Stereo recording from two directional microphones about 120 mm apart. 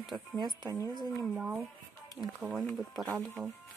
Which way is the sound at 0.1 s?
35° right (ahead or behind).